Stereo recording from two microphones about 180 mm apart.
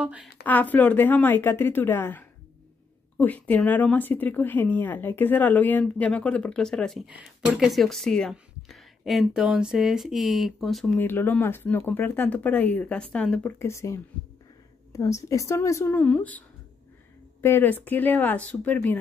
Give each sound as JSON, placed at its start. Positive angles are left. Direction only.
{"t": 0.0, "sound": "speech", "side_deg": -5}
{"t": 0.4, "sound": "speech", "side_deg": 10}